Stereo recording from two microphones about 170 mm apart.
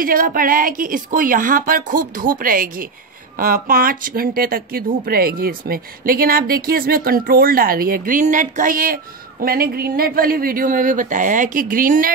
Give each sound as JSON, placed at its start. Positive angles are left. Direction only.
{"t": 0.0, "sound": "speech", "side_deg": -55}